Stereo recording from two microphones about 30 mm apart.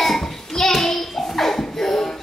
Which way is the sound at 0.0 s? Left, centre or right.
Centre.